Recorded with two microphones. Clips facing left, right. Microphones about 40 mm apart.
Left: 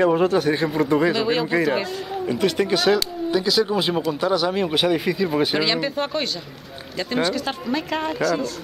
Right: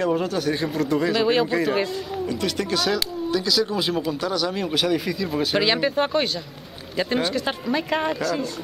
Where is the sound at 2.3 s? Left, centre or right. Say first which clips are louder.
Left 6 dB; centre.